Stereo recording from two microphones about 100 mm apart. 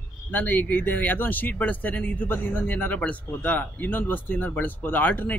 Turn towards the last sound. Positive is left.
turn(degrees=20)  # may be behind; listen again after turning